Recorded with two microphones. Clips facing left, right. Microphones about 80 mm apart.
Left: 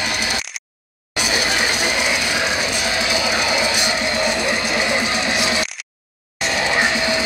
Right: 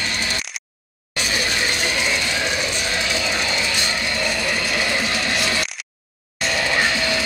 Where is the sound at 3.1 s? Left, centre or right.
Centre.